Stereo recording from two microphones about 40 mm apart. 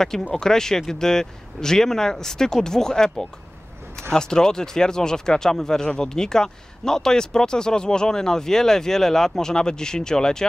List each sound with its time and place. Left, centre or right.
0.3 s speech: centre